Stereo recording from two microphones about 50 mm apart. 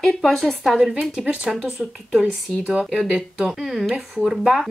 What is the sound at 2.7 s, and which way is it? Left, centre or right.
Speech, centre.